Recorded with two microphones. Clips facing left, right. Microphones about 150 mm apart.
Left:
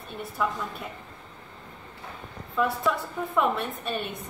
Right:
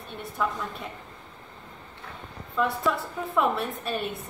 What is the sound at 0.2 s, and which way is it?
Speech, centre (ahead or behind).